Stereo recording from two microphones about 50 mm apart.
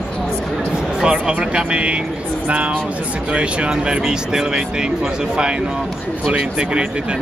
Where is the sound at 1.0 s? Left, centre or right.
Centre.